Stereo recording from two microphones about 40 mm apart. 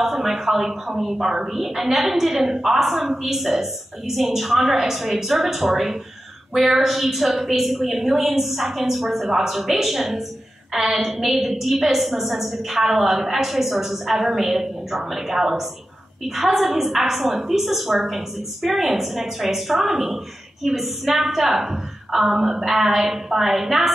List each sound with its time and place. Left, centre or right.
0.0 s a woman's voice: centre